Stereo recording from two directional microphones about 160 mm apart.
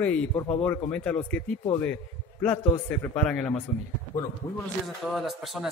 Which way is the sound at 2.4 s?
10° left (ahead or behind).